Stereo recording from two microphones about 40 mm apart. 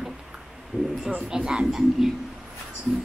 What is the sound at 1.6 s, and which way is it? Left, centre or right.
Speech, centre.